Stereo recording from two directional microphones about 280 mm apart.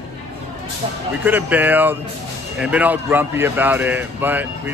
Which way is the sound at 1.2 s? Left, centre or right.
Centre.